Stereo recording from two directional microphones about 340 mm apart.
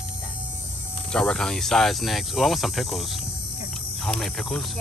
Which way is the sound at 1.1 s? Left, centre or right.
Centre.